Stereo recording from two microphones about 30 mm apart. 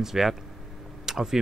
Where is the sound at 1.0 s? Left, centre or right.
Centre.